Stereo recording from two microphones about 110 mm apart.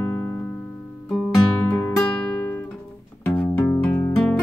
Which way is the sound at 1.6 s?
15° left (ahead or behind).